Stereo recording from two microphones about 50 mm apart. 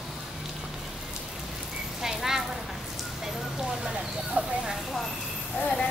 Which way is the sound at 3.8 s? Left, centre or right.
Centre.